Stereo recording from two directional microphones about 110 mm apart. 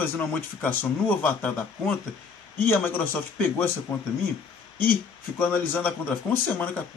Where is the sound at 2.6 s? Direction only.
20° left (ahead or behind).